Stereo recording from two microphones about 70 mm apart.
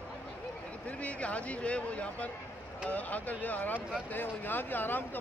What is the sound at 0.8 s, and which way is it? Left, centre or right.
Speech, centre.